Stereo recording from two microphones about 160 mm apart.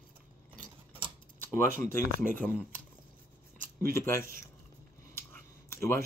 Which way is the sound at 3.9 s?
15° left (ahead or behind).